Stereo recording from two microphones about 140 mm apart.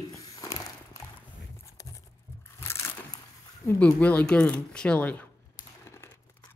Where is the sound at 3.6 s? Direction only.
10° left (ahead or behind).